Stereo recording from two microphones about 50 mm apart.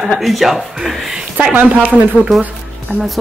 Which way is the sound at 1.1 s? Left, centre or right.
Centre.